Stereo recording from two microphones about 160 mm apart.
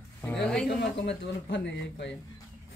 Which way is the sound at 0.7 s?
90° left.